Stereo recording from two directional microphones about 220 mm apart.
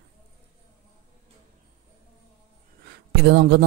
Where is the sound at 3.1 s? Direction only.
50° right (ahead or behind).